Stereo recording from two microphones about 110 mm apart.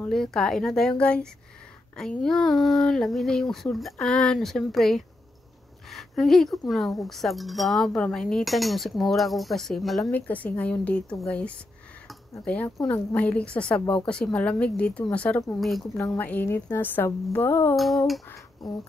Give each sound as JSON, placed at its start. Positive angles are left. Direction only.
{"t": 0.1, "sound": "a woman's voice", "side_deg": 5}
{"t": 10.1, "sound": "a woman's voice", "side_deg": 15}
{"t": 17.7, "sound": "speech", "side_deg": 0}